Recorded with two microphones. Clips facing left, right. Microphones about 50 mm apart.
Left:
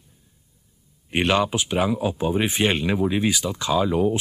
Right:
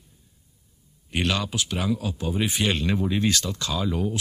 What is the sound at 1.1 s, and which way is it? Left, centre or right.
Speech, left.